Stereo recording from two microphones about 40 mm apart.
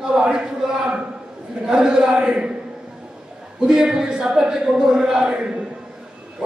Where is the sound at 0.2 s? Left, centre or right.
Right.